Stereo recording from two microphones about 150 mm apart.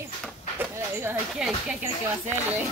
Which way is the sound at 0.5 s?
15° right (ahead or behind).